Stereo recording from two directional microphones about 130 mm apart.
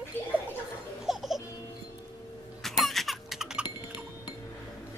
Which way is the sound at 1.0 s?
Centre (ahead or behind).